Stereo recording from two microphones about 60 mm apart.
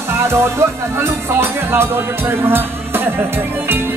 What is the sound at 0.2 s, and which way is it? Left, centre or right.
Speech, right.